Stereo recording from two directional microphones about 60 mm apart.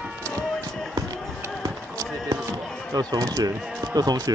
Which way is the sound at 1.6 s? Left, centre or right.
Right.